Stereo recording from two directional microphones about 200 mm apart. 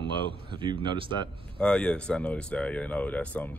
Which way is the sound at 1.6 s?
5° left (ahead or behind).